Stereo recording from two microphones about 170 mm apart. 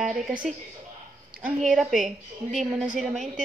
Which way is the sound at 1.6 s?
Centre (ahead or behind).